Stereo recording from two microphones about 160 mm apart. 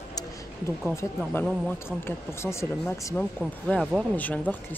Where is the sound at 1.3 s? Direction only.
15° left (ahead or behind).